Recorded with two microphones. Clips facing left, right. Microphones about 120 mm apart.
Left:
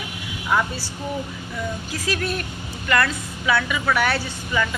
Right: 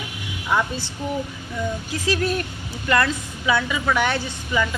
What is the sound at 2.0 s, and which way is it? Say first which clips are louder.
Speech: right 4 dB; 35° right (ahead or behind).